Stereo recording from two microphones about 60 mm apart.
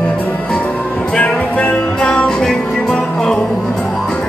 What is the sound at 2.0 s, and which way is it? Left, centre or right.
Music, centre.